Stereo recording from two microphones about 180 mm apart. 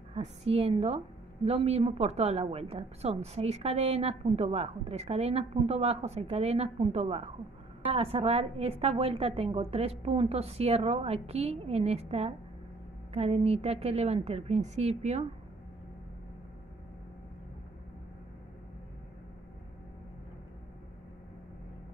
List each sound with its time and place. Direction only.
0.1 s a woman's voice: 35° right (ahead or behind)